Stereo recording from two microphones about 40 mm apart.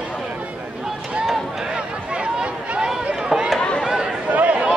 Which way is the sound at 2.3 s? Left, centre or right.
Right.